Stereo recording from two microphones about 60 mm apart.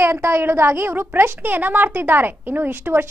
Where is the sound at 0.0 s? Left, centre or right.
Right.